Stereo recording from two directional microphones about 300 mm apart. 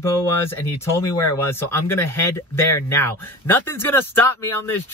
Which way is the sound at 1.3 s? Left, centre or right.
Centre.